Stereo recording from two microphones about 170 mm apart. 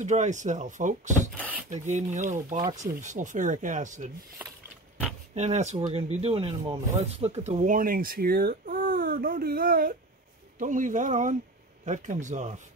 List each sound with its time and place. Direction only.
0.0 s speech: 45° right (ahead or behind)
1.3 s speech: 10° right (ahead or behind)
1.7 s speech: 45° right (ahead or behind)
2.5 s speech: 20° right (ahead or behind)
3.0 s speech: 50° right (ahead or behind)
4.4 s a sound: 10° right (ahead or behind)
5.3 s speech: 40° right (ahead or behind)